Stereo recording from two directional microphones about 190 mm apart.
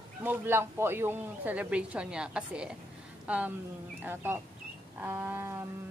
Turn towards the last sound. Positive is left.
turn(degrees=-15)  # may be behind; listen again after turning